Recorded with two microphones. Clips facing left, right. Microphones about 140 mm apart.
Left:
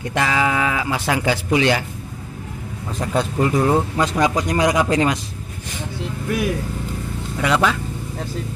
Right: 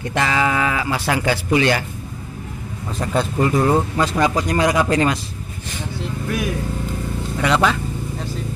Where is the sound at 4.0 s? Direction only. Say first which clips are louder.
Even; 15° left (ahead or behind).